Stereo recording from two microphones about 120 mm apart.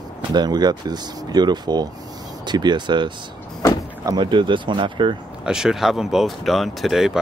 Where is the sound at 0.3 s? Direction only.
35° right (ahead or behind).